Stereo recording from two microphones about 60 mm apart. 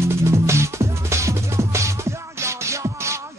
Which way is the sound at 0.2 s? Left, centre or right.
Right.